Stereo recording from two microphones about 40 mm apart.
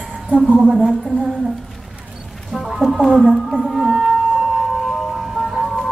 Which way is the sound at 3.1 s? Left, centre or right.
Centre.